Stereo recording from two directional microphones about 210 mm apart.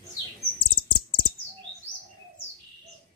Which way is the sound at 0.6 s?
20° left (ahead or behind).